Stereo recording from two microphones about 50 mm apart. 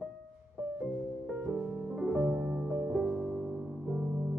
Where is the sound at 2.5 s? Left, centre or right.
Right.